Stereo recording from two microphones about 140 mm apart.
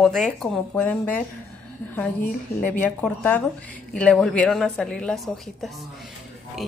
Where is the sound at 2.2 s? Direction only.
80° left.